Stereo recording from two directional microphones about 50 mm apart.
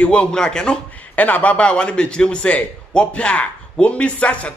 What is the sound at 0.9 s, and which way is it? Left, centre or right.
A man's voice, left.